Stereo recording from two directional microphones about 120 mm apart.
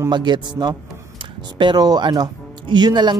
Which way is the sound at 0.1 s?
40° right (ahead or behind).